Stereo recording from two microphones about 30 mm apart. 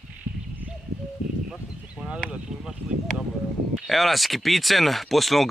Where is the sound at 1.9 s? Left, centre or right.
Right.